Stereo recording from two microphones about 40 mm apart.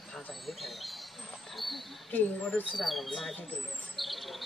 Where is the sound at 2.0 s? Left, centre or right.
Left.